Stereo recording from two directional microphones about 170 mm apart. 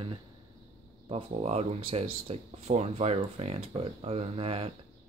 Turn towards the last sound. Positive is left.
turn(degrees=-35)  # may be behind; listen again after turning